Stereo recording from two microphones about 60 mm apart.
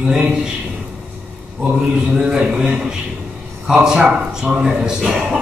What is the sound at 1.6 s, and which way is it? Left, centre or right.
A man's voice, centre.